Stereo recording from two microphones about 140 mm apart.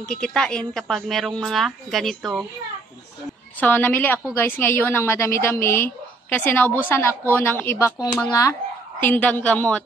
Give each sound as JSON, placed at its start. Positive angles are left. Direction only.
{"t": 0.1, "sound": "a woman's voice", "side_deg": 5}
{"t": 3.5, "sound": "speech", "side_deg": 10}